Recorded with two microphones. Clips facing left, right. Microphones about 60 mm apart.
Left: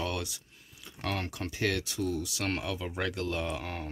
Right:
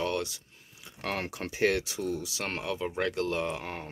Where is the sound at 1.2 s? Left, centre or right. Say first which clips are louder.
Right 4 dB; centre.